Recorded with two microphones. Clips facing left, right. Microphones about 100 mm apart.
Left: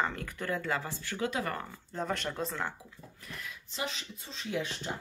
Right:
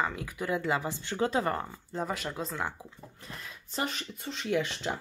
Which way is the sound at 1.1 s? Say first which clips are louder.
Right 5 dB; 30° right (ahead or behind).